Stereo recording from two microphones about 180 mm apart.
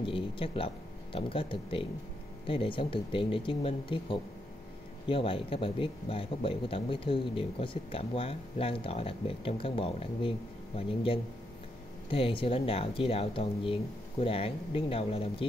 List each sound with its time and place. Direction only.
0.0 s speech: 30° left (ahead or behind)